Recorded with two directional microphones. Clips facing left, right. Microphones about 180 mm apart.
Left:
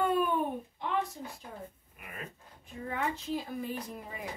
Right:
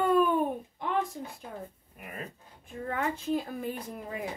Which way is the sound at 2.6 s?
50° right (ahead or behind).